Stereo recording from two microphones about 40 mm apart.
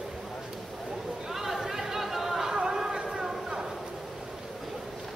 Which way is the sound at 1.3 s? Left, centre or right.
Centre.